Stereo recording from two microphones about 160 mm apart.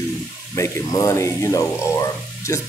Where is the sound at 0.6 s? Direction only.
20° left (ahead or behind).